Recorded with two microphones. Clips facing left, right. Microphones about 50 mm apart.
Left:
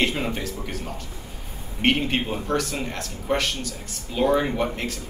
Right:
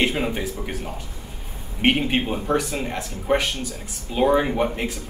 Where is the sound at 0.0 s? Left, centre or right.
Centre.